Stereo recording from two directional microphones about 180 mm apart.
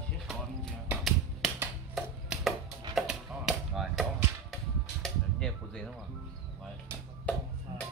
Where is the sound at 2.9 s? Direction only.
5° right (ahead or behind).